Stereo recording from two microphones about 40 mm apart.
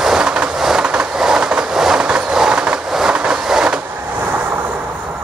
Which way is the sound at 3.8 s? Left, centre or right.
Right.